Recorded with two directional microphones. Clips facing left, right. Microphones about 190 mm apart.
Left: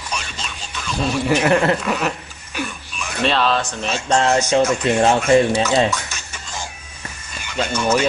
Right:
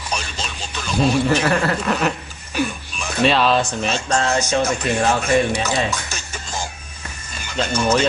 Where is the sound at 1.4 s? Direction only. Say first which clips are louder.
Left 3 dB; 20° left (ahead or behind).